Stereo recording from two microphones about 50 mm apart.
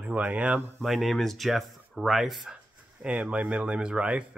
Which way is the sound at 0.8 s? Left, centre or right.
Centre.